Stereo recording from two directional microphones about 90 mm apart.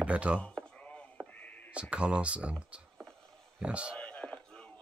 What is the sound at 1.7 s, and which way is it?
Speech, 10° right (ahead or behind).